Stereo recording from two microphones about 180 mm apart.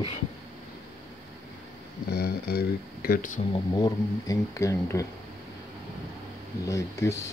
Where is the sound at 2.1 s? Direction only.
60° left (ahead or behind).